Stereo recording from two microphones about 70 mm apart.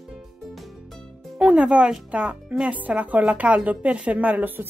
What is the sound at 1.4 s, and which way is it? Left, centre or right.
A woman's voice, centre.